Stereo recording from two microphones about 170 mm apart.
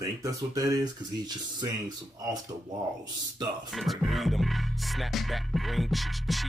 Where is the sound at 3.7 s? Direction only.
Centre (ahead or behind).